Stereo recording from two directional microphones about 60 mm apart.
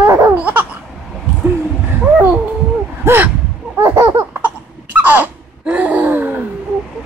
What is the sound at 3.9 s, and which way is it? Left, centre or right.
Laughter, right.